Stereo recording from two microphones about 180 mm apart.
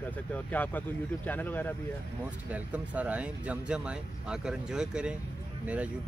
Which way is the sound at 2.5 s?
10° right (ahead or behind).